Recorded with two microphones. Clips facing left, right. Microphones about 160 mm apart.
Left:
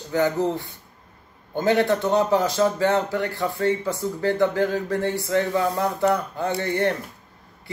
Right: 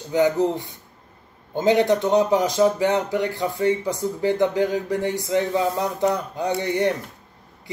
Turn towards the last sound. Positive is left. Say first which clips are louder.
# right 2 dB
turn(degrees=-20)  # may be behind; listen again after turning